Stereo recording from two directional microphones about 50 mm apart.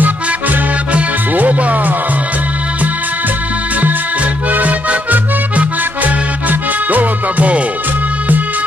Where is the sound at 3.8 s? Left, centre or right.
Right.